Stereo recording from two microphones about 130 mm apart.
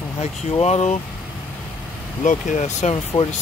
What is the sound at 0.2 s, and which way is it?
Speech, 55° left (ahead or behind).